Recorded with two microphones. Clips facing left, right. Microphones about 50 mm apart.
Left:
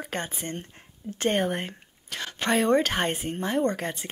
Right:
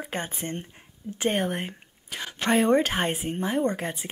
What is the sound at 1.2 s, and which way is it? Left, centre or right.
Speech, centre.